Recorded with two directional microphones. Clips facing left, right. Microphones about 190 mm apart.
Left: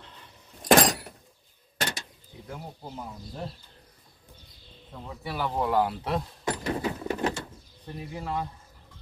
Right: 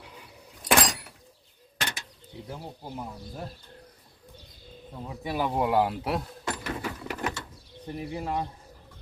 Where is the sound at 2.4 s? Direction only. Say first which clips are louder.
Even; 5° right (ahead or behind).